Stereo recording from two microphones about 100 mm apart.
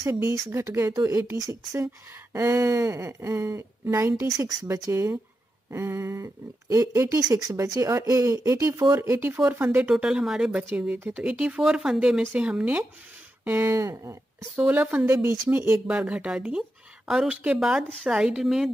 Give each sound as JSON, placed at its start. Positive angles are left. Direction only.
{"t": 0.0, "sound": "speech", "side_deg": -30}
{"t": 2.3, "sound": "speech", "side_deg": -25}
{"t": 9.8, "sound": "speech", "side_deg": -10}
{"t": 14.6, "sound": "speech", "side_deg": -15}
{"t": 15.9, "sound": "a woman's voice", "side_deg": -10}